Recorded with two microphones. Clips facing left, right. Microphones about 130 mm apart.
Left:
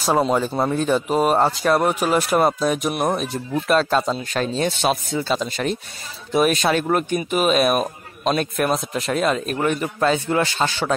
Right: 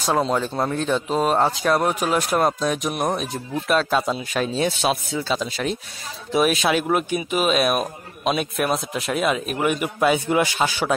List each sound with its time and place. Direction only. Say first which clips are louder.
0.0 s a man's voice: left 2 dB; 5° left (ahead or behind)